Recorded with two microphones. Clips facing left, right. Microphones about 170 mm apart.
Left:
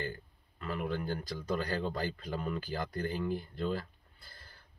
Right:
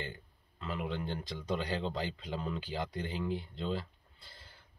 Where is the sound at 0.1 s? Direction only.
25° right (ahead or behind).